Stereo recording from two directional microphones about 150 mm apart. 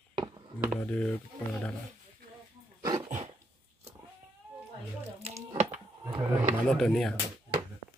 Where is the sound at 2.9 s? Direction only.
50° right (ahead or behind).